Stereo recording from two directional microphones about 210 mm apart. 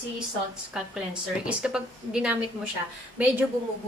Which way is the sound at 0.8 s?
5° right (ahead or behind).